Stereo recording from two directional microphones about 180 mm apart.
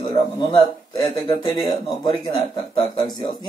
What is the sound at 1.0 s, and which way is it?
A man's voice, 20° left (ahead or behind).